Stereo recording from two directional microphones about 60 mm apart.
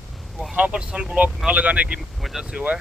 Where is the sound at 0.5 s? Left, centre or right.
Right.